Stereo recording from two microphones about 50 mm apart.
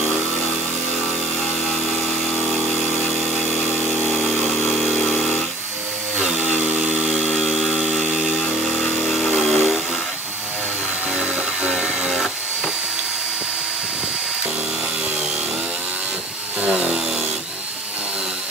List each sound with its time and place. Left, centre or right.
1.7 s power tool: centre
5.1 s electric toothbrush: centre
6.8 s a sound: centre
8.2 s chainsaw: centre
11.1 s music: right
11.7 s a sound: centre